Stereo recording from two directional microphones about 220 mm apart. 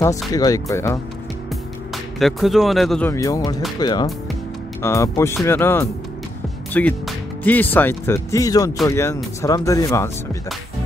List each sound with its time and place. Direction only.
0.3 s speech: 15° left (ahead or behind)
2.1 s speech: centre (ahead or behind)